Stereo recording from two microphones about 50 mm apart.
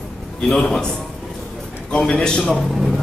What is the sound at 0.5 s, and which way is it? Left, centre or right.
Speech, centre.